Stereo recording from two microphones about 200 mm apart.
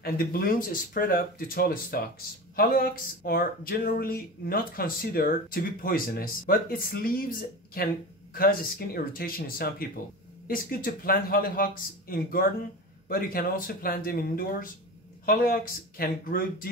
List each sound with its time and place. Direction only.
0.0 s speech: 50° left (ahead or behind)